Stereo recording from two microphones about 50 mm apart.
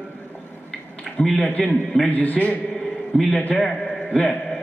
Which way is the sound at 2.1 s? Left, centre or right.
Left.